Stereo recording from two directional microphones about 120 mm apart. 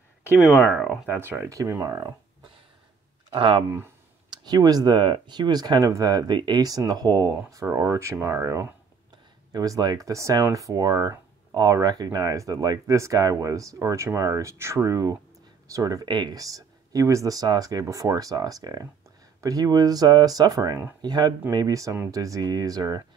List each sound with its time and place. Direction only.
0.4 s speech: centre (ahead or behind)
1.1 s speech: 20° right (ahead or behind)
3.3 s speech: 45° right (ahead or behind)
4.3 s speech: 35° right (ahead or behind)